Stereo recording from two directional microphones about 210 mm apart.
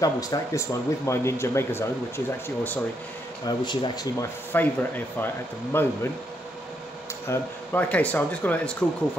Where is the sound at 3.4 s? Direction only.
20° left (ahead or behind).